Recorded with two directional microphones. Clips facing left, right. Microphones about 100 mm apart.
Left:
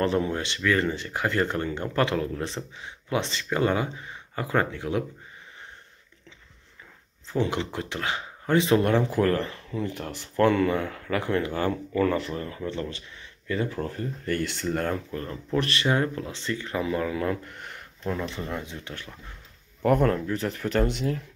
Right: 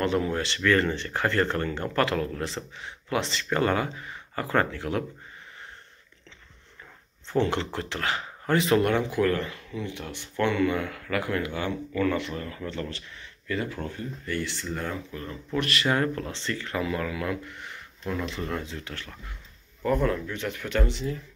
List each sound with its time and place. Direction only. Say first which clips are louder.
0.0 s speech: left 1 dB; 30° left (ahead or behind)
0.3 s speech: right 2 dB; 20° left (ahead or behind)
7.2 s speech: right 1 dB; 15° left (ahead or behind); by 15.0 s 55° left (ahead or behind)
15.0 s speech: left 3 dB; 40° left (ahead or behind); by 16.6 s 15° left (ahead or behind)
16.6 s speech: left 2 dB; 25° left (ahead or behind); by 17.8 s 50° left (ahead or behind)
18.0 s speech: left 1 dB; 25° left (ahead or behind)
19.8 s speech: left 3 dB; 55° left (ahead or behind)
20.2 s speech: left 4 dB; 35° left (ahead or behind)
20.9 s speech: left 3 dB; 60° left (ahead or behind)